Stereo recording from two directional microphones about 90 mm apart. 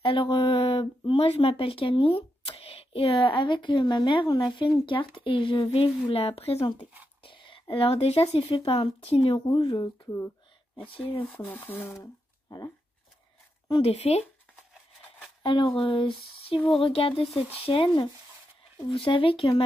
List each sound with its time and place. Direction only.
0.0 s speech: 75° left (ahead or behind); by 6.9 s 90° left
7.2 s speech: 70° left (ahead or behind); by 9.4 s 90° left
9.5 s speech: 50° left (ahead or behind)
11.3 s speech: 20° left (ahead or behind)
13.7 s speech: 90° left
15.4 s speech: 65° left (ahead or behind)
16.8 s speech: 90° left
17.6 s speech: 70° left (ahead or behind)
18.9 s speech: 85° left